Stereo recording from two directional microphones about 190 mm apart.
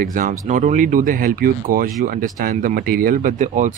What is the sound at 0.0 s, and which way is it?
Speech, 45° right (ahead or behind).